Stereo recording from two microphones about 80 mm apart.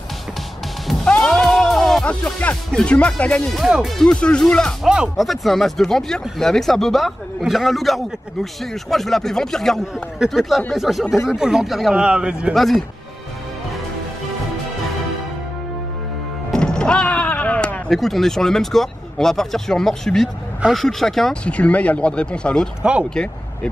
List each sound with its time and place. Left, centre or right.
1.0 s music: centre
2.0 s speech: centre
3.6 s speech: centre
4.0 s speech: centre
4.8 s speech: centre
5.1 s speech: centre
12.5 s speech: centre
16.4 s music: centre
17.8 s speech: centre
21.5 s speech: centre
22.8 s speech: centre
23.0 s speech: centre